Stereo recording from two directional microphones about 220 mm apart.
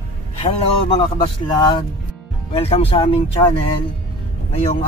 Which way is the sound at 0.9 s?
20° left (ahead or behind).